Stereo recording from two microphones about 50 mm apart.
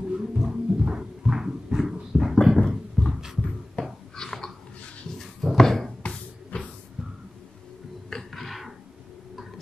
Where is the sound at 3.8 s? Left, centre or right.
Left.